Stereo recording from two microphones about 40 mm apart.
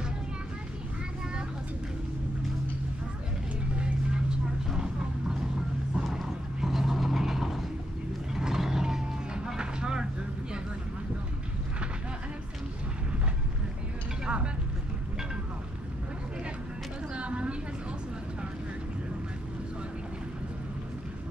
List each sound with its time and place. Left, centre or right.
3.7 s vehicle: right
6.6 s vehicle: centre
14.2 s vehicle: right
17.1 s a sound: right